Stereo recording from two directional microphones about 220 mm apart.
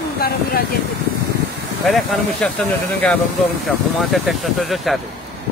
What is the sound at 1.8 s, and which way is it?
Speech, centre (ahead or behind).